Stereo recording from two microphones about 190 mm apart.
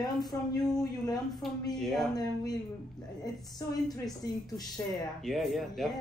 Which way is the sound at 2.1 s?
20° left (ahead or behind).